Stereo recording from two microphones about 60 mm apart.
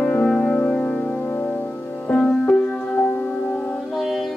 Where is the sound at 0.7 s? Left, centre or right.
Centre.